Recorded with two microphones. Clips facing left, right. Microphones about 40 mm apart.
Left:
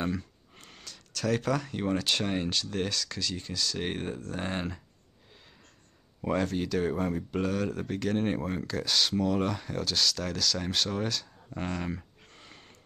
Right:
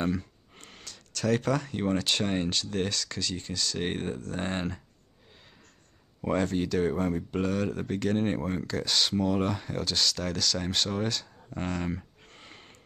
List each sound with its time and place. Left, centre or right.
0.0 s speech: centre
6.2 s speech: centre
12.3 s a sound: centre